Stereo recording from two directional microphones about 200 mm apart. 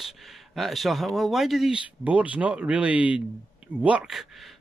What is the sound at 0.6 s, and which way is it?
Speech, centre (ahead or behind).